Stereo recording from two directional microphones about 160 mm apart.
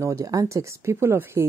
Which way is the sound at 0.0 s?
20° right (ahead or behind).